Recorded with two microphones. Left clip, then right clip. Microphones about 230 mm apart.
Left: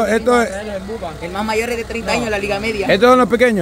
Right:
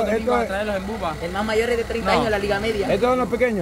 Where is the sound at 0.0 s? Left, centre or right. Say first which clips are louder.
Left 6 dB; left.